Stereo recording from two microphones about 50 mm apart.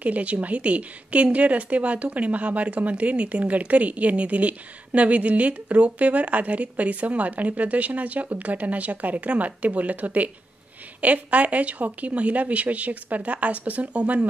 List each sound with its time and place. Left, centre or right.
0.0 s a woman's voice: right